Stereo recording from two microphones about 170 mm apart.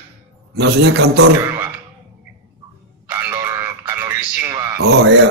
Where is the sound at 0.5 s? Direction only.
85° right.